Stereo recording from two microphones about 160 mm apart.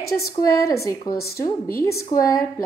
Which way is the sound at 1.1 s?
75° left (ahead or behind).